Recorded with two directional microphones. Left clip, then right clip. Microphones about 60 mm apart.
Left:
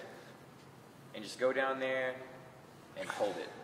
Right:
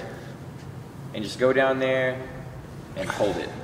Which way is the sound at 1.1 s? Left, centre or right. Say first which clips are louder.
Right 12 dB; left.